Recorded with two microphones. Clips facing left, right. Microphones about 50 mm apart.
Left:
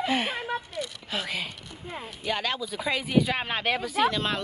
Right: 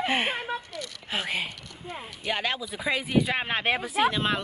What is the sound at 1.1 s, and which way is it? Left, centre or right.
Speech, right.